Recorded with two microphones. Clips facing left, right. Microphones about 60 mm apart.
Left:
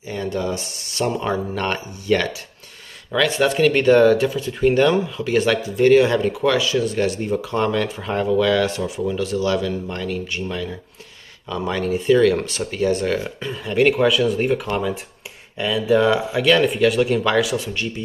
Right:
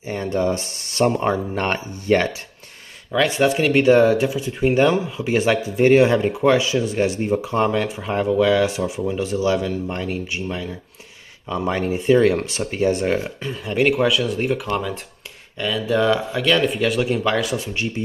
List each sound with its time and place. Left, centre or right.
0.0 s speech: right
3.4 s speech: centre; by 13.3 s right
13.4 s speech: centre